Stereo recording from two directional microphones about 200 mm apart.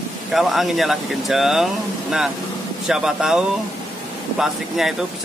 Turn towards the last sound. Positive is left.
turn(degrees=0)  # may be behind; listen again after turning